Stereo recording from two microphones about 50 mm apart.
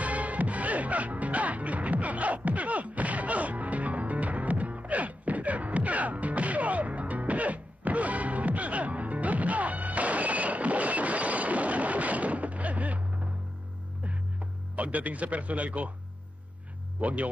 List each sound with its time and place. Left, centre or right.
0.0 s music: right
17.0 s a man's voice: right